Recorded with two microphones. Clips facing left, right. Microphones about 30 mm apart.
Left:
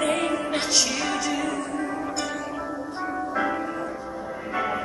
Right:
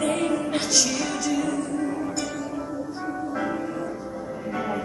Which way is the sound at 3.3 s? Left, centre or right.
Centre.